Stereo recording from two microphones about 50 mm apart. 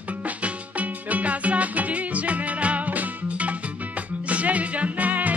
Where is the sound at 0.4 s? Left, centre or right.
Right.